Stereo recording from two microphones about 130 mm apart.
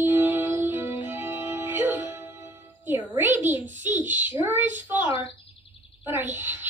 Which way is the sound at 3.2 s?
15° right (ahead or behind).